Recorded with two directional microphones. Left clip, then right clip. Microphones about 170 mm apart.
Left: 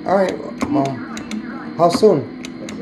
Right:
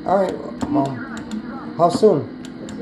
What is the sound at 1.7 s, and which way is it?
Speech, 5° left (ahead or behind).